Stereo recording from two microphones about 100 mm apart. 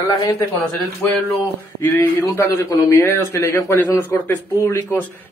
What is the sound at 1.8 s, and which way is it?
A man's voice, 25° left (ahead or behind).